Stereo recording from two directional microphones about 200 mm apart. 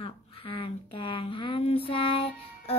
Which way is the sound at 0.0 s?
30° left (ahead or behind).